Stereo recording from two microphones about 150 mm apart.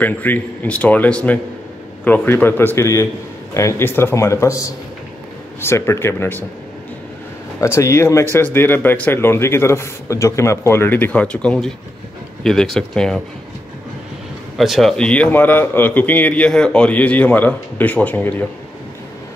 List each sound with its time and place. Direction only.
0.0 s a man's voice: 10° left (ahead or behind)
7.6 s a man's voice: 20° left (ahead or behind)
14.6 s a man's voice: centre (ahead or behind)